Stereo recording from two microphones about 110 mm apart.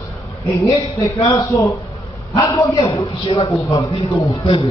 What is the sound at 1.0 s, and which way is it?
A man's voice, 35° left (ahead or behind).